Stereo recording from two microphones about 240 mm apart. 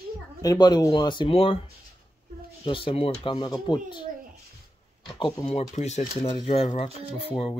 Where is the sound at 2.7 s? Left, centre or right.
Left.